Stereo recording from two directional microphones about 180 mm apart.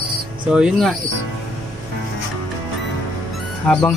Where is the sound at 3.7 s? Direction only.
5° left (ahead or behind).